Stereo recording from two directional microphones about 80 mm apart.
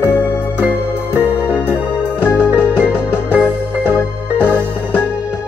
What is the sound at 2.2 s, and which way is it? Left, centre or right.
Music, left.